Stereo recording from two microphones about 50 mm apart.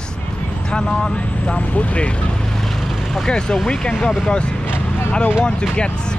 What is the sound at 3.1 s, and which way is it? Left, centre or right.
Speech, centre.